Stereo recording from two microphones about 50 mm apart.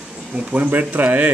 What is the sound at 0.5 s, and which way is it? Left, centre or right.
Speech, right.